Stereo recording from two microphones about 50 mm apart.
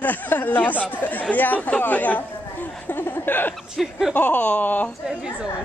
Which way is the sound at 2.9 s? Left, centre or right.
Left.